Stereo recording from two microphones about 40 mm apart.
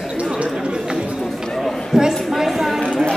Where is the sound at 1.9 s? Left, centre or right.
Centre.